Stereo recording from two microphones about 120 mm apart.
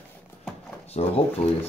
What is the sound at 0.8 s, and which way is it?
Speech, 60° left (ahead or behind).